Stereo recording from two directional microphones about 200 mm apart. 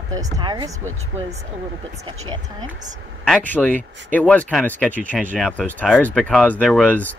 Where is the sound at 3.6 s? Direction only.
Centre (ahead or behind).